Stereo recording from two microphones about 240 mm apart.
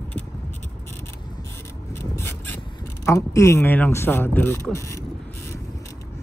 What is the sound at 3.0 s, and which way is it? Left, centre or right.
Speech, centre.